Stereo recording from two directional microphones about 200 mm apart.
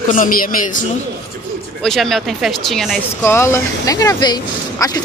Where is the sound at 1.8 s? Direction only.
Centre (ahead or behind).